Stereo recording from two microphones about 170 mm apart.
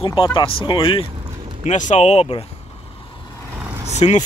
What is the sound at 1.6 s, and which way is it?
Speech, 45° left (ahead or behind).